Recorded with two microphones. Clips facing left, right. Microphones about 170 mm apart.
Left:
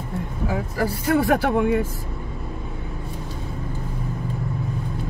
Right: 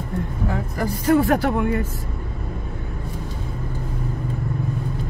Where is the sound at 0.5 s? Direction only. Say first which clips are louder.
Left 3 dB; 5° left (ahead or behind).